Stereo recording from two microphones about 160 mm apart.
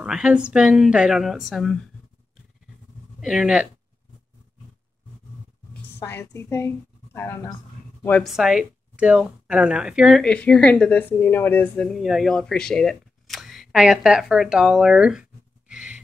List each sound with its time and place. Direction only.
0.0 s a woman's voice: 5° right (ahead or behind)
3.2 s a woman's voice: 5° right (ahead or behind)
5.7 s a woman's voice: 15° left (ahead or behind)
8.2 s a woman's voice: centre (ahead or behind)
10.2 s a woman's voice: 5° left (ahead or behind)
15.7 s a sound: 5° right (ahead or behind)